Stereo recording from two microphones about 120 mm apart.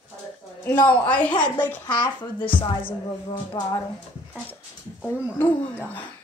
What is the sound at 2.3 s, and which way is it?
Speech, 45° left (ahead or behind).